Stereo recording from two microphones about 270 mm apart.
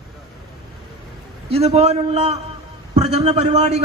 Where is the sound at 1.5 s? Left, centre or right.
Right.